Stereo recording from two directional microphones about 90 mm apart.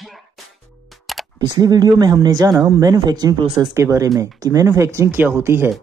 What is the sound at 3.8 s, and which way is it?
Speech, 35° right (ahead or behind).